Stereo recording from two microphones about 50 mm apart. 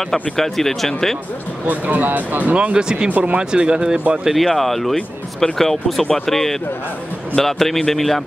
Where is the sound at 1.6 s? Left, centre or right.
Right.